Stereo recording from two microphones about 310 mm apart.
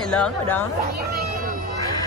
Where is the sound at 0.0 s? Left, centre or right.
Centre.